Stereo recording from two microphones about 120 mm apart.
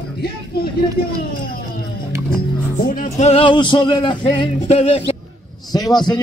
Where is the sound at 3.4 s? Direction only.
40° left (ahead or behind).